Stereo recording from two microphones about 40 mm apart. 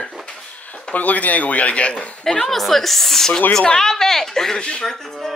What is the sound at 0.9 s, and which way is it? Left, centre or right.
A man's voice, left.